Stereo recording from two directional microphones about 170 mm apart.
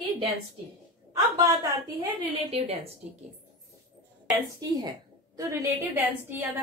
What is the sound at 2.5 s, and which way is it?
Speech, 35° right (ahead or behind).